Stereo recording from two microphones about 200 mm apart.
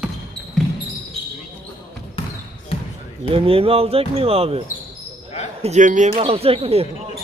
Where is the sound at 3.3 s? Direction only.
30° right (ahead or behind).